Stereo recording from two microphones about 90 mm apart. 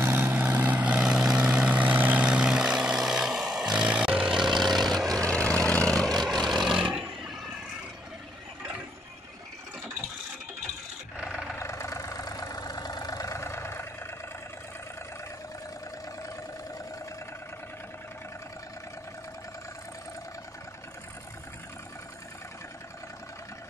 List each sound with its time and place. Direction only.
0.0 s vehicle: 20° right (ahead or behind); by 7.3 s 5° right (ahead or behind)
11.1 s roar: centre (ahead or behind)
11.5 s vehicle: 35° left (ahead or behind)